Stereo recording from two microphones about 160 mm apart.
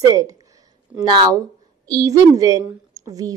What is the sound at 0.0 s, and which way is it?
A woman's voice, 20° right (ahead or behind).